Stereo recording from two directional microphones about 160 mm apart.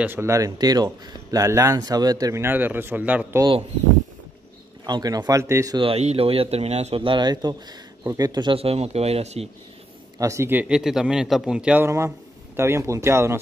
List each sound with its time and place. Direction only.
0.0 s speech: 15° right (ahead or behind)
4.8 s speech: 25° right (ahead or behind)
5.8 s speech: 40° right (ahead or behind)
10.1 s speech: 20° right (ahead or behind)